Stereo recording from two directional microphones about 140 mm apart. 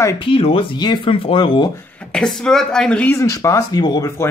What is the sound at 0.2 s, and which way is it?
Speech, 40° left (ahead or behind).